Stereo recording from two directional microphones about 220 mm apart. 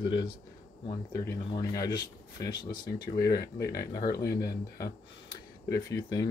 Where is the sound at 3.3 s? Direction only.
45° left (ahead or behind).